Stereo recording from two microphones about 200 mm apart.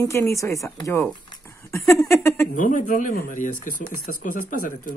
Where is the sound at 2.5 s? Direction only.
40° left (ahead or behind).